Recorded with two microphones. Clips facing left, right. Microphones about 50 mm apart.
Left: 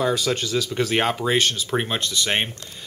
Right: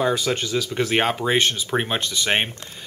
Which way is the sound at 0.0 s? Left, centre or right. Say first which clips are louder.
Even; centre.